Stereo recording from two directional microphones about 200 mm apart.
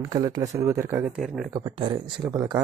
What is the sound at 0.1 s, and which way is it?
Speech, 20° right (ahead or behind).